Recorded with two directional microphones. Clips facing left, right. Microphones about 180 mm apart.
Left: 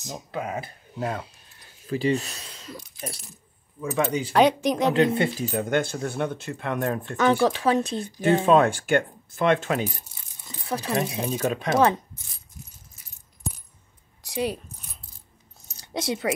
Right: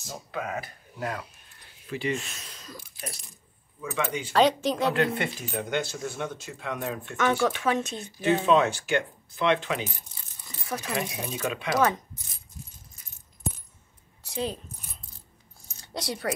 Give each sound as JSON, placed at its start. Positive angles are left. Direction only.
{"t": 0.3, "sound": "speech", "side_deg": 30}
{"t": 1.9, "sound": "speech", "side_deg": 35}
{"t": 3.8, "sound": "speech", "side_deg": 35}
{"t": 4.3, "sound": "speech", "side_deg": 15}
{"t": 7.4, "sound": "speech", "side_deg": 35}
{"t": 8.2, "sound": "speech", "side_deg": 50}
{"t": 10.4, "sound": "speech", "side_deg": 30}
{"t": 14.2, "sound": "a sound", "side_deg": 15}
{"t": 15.9, "sound": "speech", "side_deg": 20}